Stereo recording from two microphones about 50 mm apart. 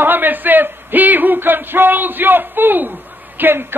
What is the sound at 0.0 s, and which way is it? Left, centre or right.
A man's voice, right.